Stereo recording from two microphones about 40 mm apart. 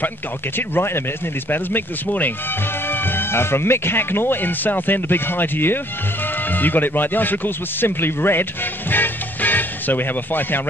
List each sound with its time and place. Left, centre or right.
0.6 s speech: left
1.5 s speech: left
2.9 s speech: left
6.5 s speech: left
8.9 s music: left